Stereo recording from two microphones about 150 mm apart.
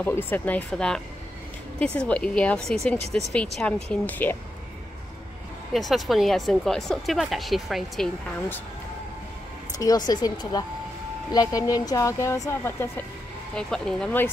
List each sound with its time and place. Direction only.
0.0 s speech: 15° left (ahead or behind)
5.7 s a woman's voice: centre (ahead or behind)
9.8 s speech: 25° left (ahead or behind)
13.6 s a woman's voice: 5° left (ahead or behind)